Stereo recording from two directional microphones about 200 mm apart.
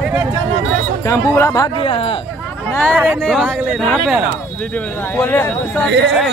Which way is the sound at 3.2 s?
Centre (ahead or behind).